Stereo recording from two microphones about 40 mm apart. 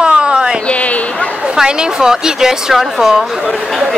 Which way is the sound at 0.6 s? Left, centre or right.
Left.